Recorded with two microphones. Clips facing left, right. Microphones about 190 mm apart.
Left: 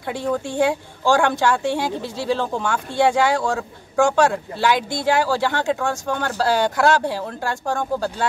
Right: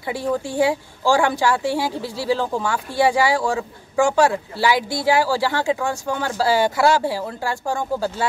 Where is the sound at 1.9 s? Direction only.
20° left (ahead or behind).